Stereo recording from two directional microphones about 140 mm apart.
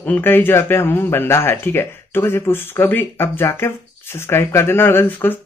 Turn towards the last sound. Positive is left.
turn(degrees=15)  # may be behind; listen again after turning